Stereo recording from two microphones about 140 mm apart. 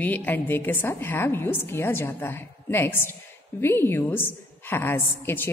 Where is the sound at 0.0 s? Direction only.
10° left (ahead or behind).